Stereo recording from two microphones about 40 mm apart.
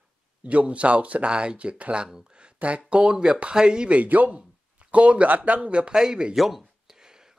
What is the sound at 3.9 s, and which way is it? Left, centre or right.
Speech, right.